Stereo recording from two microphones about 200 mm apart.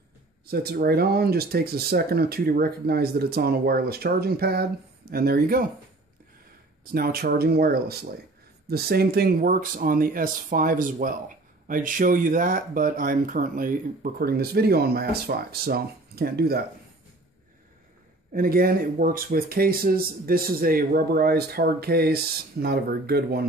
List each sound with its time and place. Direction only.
0.5 s speech: 50° right (ahead or behind)
6.8 s speech: 50° right (ahead or behind)
18.3 s speech: 45° right (ahead or behind)